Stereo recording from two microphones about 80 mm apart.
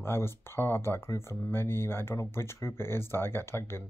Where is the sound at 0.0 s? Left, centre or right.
Left.